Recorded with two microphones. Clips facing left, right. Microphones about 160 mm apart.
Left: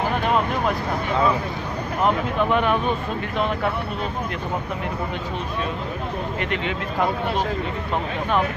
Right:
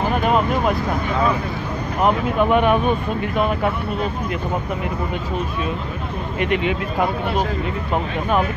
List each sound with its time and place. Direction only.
2.0 s speech: 15° right (ahead or behind)
6.4 s speech: 15° right (ahead or behind)